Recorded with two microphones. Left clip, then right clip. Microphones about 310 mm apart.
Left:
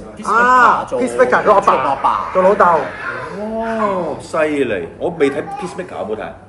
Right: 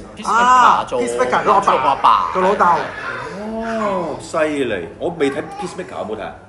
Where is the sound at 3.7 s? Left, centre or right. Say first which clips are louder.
Left 1 dB; centre.